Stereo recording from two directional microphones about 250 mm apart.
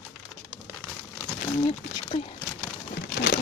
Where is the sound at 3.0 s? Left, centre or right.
Left.